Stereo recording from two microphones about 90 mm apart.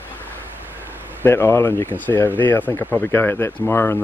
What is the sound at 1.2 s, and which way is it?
Speech, 30° left (ahead or behind).